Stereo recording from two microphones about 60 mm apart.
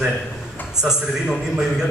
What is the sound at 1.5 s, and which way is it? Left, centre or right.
Speech, centre.